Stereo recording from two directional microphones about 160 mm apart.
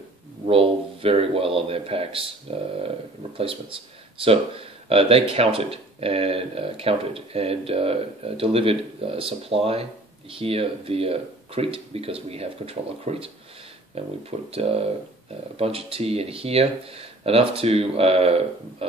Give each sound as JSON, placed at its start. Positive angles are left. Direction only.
{"t": 0.5, "sound": "a man's voice", "side_deg": -35}
{"t": 14.5, "sound": "speech", "side_deg": -40}